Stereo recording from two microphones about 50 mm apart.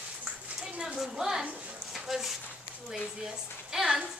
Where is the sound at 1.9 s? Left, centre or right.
Centre.